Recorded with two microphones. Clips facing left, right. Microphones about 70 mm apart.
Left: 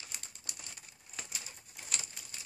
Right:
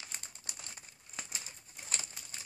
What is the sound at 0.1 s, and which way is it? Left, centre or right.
Crumpling, right.